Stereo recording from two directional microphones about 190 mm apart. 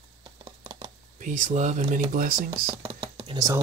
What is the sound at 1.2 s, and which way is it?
Speech, 40° right (ahead or behind).